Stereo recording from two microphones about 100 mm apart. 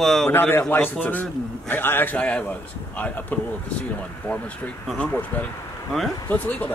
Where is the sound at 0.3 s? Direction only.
20° left (ahead or behind).